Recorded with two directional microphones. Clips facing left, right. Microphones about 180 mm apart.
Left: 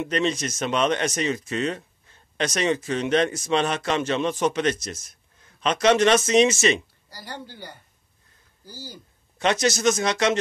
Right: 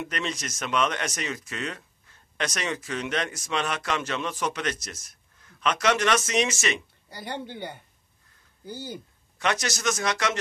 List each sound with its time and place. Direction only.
0.0 s speech: 25° left (ahead or behind)
7.1 s speech: 20° right (ahead or behind)
9.4 s speech: 25° left (ahead or behind)